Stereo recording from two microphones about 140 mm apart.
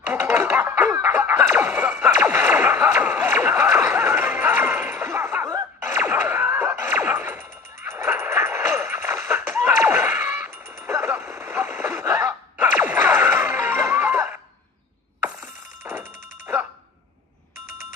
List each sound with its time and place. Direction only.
0.1 s a sound: 15° right (ahead or behind)
13.0 s music: 15° right (ahead or behind)
15.2 s telephone bell ringing: 20° right (ahead or behind)